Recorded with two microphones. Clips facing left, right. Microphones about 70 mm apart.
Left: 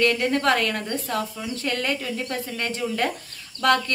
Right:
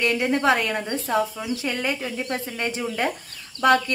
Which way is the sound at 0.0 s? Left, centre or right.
Centre.